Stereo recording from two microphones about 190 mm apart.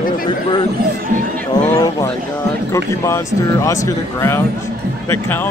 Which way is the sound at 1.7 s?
20° left (ahead or behind).